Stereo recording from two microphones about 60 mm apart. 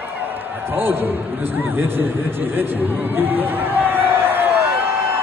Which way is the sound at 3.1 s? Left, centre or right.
Right.